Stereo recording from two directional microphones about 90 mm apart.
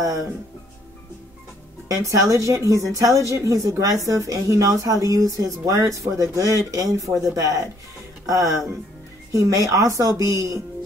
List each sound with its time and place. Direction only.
0.0 s a woman's voice: 40° right (ahead or behind)
1.9 s a woman's voice: 35° right (ahead or behind)